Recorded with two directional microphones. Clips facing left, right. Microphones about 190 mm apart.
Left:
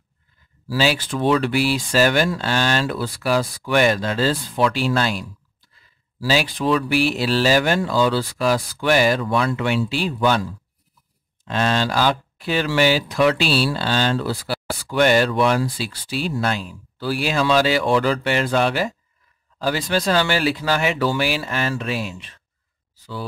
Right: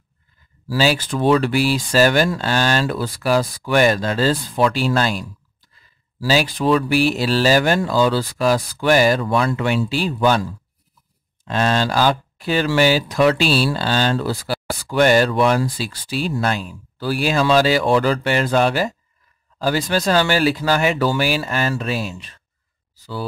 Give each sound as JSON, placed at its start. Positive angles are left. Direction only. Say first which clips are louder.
{"t": 0.7, "sound": "speech", "louder": "right 2 dB", "side_deg": -40}
{"t": 11.4, "sound": "speech", "louder": "right 2 dB", "side_deg": -40}